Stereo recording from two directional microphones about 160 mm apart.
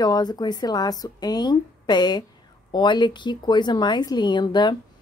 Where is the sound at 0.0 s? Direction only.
25° left (ahead or behind).